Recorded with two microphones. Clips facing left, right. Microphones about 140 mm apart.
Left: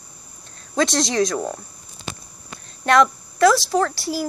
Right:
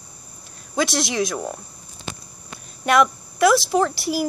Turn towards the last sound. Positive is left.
turn(degrees=-15)  # may be behind; listen again after turning